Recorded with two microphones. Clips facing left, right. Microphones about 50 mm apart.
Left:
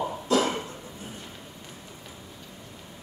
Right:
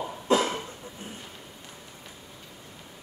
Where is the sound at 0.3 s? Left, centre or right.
Right.